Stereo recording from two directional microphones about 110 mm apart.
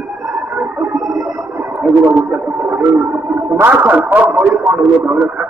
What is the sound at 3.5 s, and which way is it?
A man's voice, 15° right (ahead or behind).